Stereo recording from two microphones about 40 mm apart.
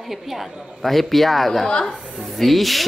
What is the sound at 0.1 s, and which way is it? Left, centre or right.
Speech, centre.